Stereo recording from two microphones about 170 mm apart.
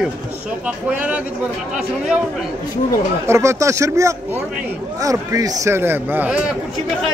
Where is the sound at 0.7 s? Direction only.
10° right (ahead or behind).